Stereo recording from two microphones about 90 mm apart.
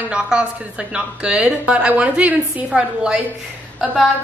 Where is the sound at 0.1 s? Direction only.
10° right (ahead or behind).